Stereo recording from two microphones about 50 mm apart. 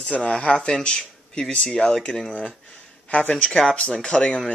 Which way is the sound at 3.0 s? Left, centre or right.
Left.